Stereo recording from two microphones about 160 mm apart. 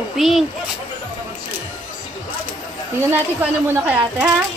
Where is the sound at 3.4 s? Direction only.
10° right (ahead or behind).